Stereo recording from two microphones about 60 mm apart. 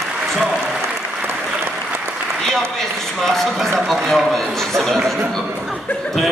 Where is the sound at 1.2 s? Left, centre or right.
Right.